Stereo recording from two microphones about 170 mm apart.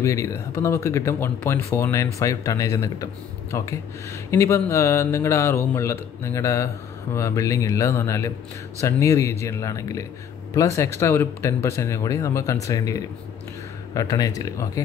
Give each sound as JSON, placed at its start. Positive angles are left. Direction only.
{"t": 0.0, "sound": "speech", "side_deg": 15}